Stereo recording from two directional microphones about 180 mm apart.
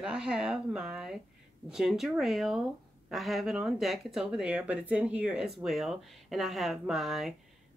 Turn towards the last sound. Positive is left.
turn(degrees=0)  # may be behind; listen again after turning